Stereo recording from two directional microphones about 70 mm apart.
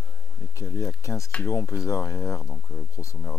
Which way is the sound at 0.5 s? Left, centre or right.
Left.